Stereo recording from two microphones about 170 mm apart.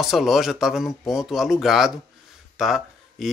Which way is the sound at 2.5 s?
Centre (ahead or behind).